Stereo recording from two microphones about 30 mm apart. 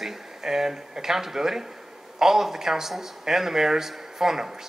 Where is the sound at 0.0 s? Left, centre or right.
Centre.